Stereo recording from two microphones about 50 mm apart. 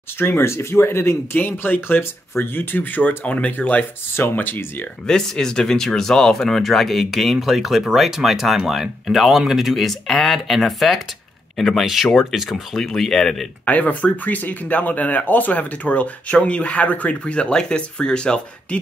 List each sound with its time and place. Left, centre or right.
0.2 s speech: left
1.4 s speech: left
3.3 s speech: left
4.4 s speech: left
5.0 s speech: centre
13.7 s speech: left